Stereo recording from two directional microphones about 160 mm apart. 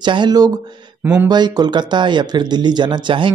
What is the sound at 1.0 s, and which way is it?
Speech, 10° right (ahead or behind).